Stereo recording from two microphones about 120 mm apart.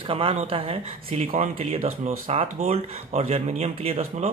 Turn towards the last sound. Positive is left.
turn(degrees=-60)  # may be behind; listen again after turning